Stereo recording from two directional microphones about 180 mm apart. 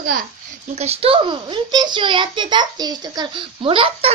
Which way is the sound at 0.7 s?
35° right (ahead or behind).